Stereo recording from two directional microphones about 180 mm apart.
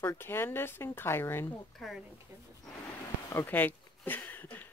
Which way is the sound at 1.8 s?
Centre (ahead or behind).